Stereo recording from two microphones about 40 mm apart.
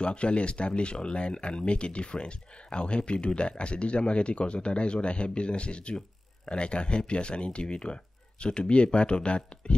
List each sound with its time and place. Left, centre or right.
0.0 s speech: left